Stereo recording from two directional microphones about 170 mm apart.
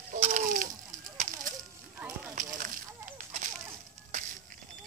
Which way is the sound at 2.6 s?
50° right (ahead or behind).